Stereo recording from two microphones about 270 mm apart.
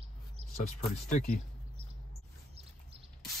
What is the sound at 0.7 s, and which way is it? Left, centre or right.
Speech, left.